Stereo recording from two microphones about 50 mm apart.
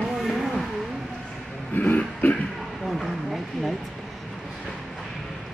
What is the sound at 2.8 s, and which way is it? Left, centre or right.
Speech, centre.